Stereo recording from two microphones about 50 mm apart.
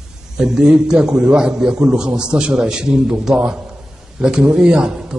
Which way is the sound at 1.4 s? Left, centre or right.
Centre.